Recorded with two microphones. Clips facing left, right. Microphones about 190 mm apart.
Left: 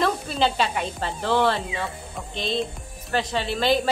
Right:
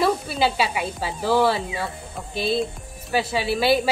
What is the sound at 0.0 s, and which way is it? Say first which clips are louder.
Speech: right 2 dB; 5° right (ahead or behind).